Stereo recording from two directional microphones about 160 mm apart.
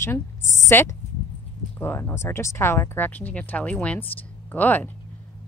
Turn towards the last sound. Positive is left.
turn(degrees=10)  # may be behind; listen again after turning